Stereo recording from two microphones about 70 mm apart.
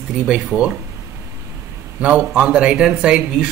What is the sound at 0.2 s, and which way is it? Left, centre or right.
Speech, centre.